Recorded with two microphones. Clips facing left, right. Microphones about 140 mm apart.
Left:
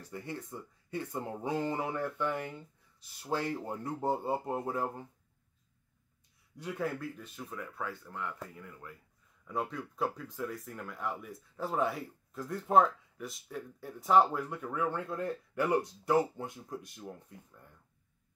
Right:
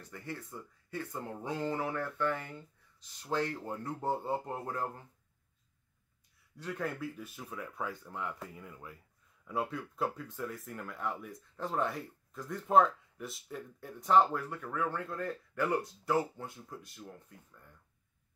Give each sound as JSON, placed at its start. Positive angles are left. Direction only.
{"t": 0.0, "sound": "speech", "side_deg": 15}
{"t": 6.6, "sound": "speech", "side_deg": 5}
{"t": 7.0, "sound": "speech", "side_deg": -10}